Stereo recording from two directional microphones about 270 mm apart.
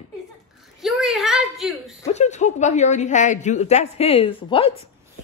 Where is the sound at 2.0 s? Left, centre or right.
Left.